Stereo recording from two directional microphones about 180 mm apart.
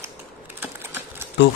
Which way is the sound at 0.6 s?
10° right (ahead or behind).